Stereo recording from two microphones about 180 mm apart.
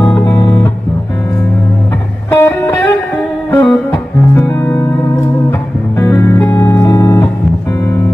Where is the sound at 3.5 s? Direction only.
15° left (ahead or behind).